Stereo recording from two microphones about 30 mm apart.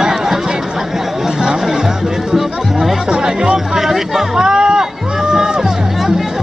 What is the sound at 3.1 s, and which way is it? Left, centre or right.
Speech, right.